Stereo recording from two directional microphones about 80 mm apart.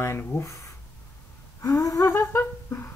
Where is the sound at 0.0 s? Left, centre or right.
Left.